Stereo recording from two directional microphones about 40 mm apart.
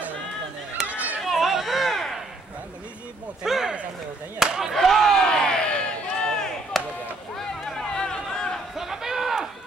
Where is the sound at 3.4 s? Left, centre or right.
Centre.